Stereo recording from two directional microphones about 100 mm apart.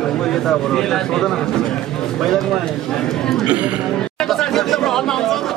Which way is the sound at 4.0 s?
5° left (ahead or behind).